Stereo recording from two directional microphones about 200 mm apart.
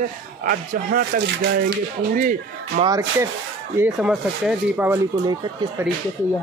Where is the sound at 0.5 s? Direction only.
50° right (ahead or behind).